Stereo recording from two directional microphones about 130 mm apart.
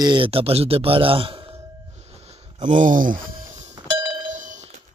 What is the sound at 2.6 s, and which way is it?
Speech, 85° right.